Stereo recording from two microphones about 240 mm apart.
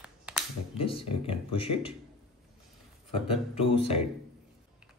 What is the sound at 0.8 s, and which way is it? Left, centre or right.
Speech, left.